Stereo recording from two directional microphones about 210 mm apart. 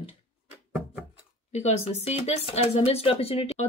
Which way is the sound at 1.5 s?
30° left (ahead or behind).